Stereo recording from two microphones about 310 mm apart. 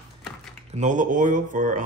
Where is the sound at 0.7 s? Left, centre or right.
Right.